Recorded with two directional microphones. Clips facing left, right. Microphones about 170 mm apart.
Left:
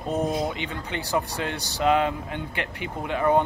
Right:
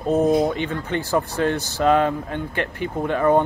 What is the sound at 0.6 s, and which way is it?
Speech, 50° right (ahead or behind).